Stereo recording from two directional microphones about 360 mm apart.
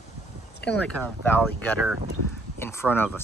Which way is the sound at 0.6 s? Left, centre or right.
Centre.